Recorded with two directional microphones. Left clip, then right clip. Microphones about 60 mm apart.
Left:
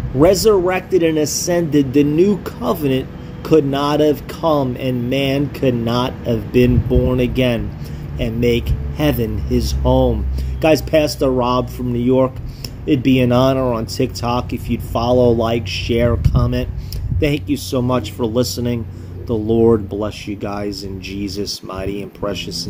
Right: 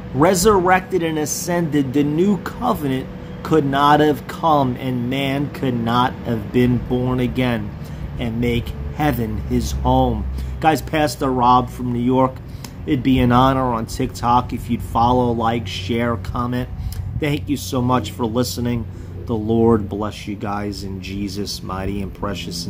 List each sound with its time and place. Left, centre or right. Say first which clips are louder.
0.2 s a man's voice: left 2 dB; right
8.9 s speech: left 2 dB; centre
9.8 s speech: left 2 dB; right
10.6 s a man's voice: left 3 dB; centre